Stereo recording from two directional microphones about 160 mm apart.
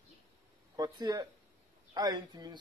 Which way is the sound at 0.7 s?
25° right (ahead or behind).